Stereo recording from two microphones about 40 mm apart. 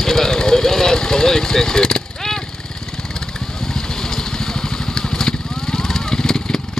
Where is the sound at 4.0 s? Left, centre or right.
Centre.